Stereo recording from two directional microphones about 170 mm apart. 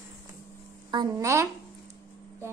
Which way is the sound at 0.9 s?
20° right (ahead or behind).